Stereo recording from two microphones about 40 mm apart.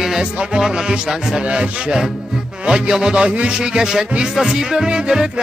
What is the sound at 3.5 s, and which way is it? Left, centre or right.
Music, centre.